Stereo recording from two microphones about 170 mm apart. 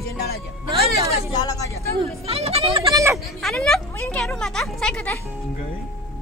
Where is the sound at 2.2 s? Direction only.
35° right (ahead or behind).